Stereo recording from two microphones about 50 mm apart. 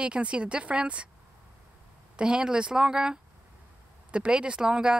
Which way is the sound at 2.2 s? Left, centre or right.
Centre.